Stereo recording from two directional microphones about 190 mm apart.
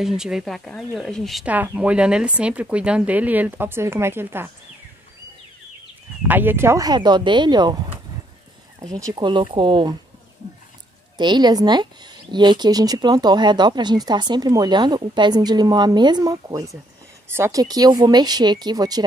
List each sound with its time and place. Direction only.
0.0 s speech: 5° right (ahead or behind)
6.2 s speech: 10° right (ahead or behind)
8.9 s speech: 20° right (ahead or behind)
11.1 s speech: 25° right (ahead or behind)